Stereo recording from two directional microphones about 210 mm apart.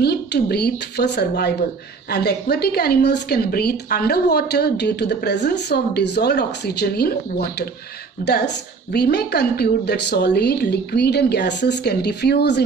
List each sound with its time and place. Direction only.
0.0 s a woman's voice: 50° left (ahead or behind)